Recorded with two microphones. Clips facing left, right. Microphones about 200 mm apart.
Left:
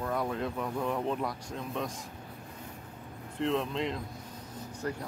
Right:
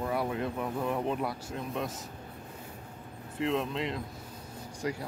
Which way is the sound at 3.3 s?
Centre (ahead or behind).